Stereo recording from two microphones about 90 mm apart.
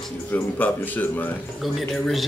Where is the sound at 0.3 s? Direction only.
20° left (ahead or behind).